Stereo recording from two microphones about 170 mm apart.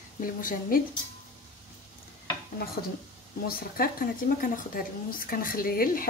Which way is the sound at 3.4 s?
60° left (ahead or behind).